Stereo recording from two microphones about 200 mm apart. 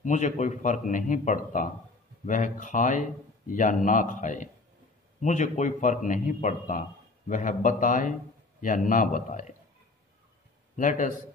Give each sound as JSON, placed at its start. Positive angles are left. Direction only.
{"t": 0.0, "sound": "a man's voice", "side_deg": 35}
{"t": 10.8, "sound": "a man's voice", "side_deg": 40}